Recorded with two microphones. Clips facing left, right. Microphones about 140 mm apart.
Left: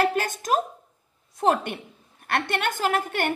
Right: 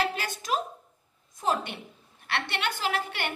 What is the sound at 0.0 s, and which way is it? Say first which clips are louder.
A woman's voice: left 6 dB; 50° left (ahead or behind).